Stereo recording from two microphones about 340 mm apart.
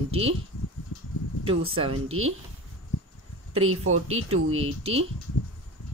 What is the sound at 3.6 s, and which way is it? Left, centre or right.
Speech, right.